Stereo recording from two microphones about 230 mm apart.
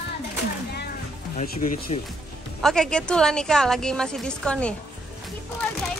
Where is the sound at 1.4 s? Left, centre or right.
Left.